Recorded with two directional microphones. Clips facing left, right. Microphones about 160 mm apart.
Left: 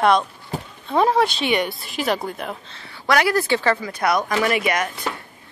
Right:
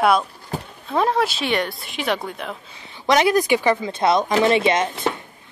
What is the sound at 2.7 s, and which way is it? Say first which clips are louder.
Speech: right 2 dB; 20° right (ahead or behind).